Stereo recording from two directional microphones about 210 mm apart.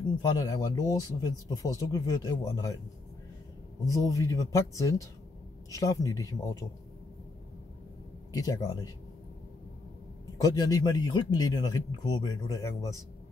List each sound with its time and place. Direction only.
0.0 s speech: 20° left (ahead or behind)
3.8 s speech: 15° left (ahead or behind)
8.3 s speech: 15° left (ahead or behind)
10.3 s speech: 15° left (ahead or behind)